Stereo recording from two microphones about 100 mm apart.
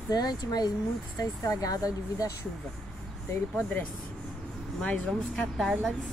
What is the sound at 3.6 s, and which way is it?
A woman's voice, 15° left (ahead or behind).